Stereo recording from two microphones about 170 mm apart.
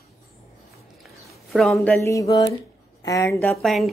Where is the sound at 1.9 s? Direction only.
15° left (ahead or behind).